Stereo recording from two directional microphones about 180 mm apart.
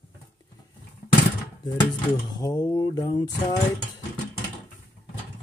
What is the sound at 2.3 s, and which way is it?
Speech, 25° left (ahead or behind).